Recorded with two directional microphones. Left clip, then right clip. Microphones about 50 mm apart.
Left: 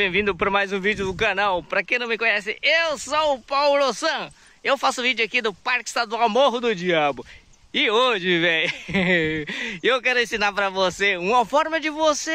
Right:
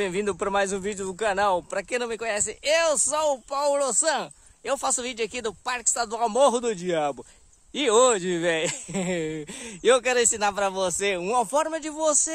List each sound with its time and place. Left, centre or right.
0.0 s speech: right
1.0 s speech: centre
1.4 s speech: right
6.5 s a man's voice: right
7.7 s speech: right